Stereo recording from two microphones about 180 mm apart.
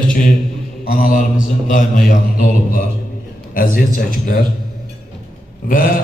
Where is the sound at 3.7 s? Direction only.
50° left (ahead or behind).